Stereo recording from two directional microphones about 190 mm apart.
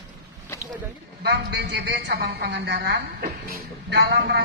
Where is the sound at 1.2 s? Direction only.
65° right (ahead or behind).